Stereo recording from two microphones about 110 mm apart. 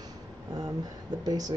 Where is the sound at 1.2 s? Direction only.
35° right (ahead or behind).